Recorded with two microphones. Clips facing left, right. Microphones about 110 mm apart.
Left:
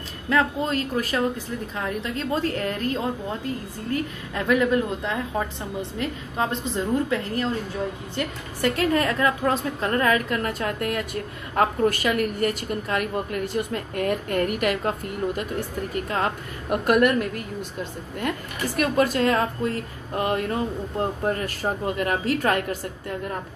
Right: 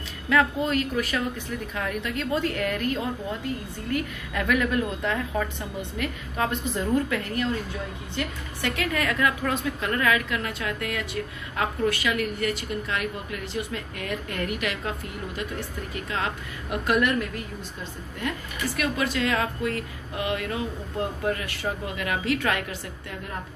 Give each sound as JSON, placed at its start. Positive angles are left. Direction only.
{"t": 0.3, "sound": "a woman's voice", "side_deg": 30}
{"t": 8.5, "sound": "a woman's voice", "side_deg": 40}
{"t": 18.8, "sound": "speech", "side_deg": 45}